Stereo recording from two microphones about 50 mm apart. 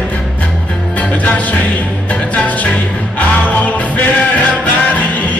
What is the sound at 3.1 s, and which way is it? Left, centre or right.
Music, left.